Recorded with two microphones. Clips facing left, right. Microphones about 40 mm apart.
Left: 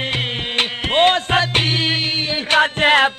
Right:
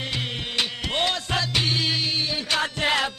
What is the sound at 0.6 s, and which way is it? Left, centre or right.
Music, left.